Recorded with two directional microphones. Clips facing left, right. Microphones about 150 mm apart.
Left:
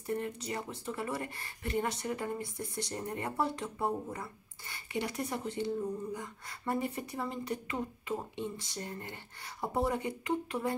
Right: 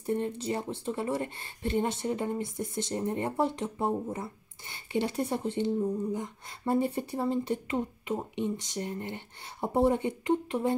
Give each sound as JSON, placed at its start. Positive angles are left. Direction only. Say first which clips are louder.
{"t": 0.0, "sound": "speech", "louder": "right 5 dB", "side_deg": -25}